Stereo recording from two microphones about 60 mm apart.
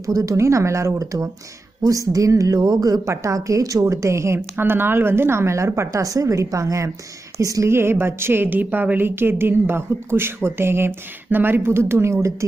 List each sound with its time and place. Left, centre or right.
0.0 s a woman's voice: right
4.6 s a woman's voice: right
7.6 s a woman's voice: right